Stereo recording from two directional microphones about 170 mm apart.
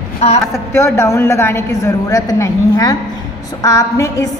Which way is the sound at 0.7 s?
15° left (ahead or behind).